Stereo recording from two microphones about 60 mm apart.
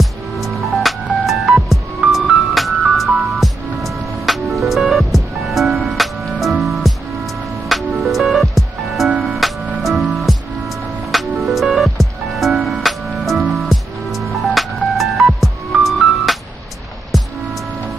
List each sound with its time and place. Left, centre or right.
0.0 s music: centre
2.0 s music: centre
2.5 s music: centre